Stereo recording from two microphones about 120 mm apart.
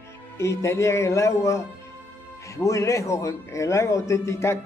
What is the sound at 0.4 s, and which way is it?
A man's voice, 25° left (ahead or behind).